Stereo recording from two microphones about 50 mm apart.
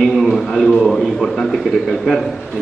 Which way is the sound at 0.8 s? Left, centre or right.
Centre.